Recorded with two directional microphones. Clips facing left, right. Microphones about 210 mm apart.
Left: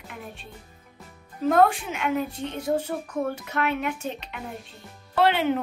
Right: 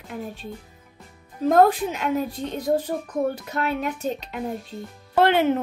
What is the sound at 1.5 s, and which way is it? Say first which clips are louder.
A woman's voice: right 3 dB; 35° right (ahead or behind).